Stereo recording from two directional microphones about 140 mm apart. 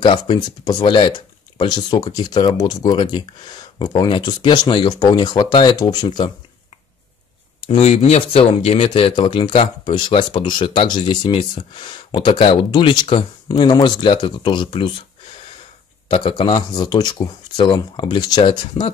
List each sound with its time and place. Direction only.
0.0 s speech: 30° left (ahead or behind)
7.6 s speech: 50° left (ahead or behind)
16.1 s speech: 40° left (ahead or behind)